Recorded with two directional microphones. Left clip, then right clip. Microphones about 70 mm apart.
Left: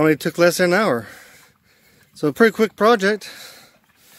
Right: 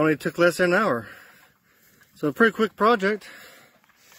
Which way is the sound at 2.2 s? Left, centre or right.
Left.